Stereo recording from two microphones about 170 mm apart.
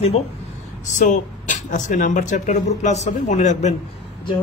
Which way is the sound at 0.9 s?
50° left (ahead or behind).